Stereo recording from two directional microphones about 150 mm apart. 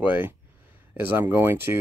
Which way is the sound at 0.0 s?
10° right (ahead or behind).